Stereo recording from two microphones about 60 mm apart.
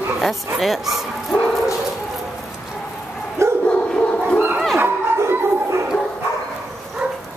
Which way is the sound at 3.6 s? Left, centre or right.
Centre.